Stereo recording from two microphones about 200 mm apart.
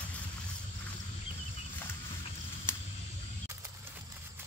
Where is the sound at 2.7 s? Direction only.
10° left (ahead or behind).